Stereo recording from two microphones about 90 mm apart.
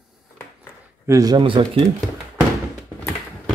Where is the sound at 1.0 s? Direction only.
40° right (ahead or behind).